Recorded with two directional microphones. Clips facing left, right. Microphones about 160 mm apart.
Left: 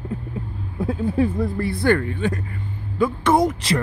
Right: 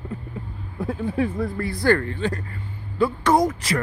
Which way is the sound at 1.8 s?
15° left (ahead or behind).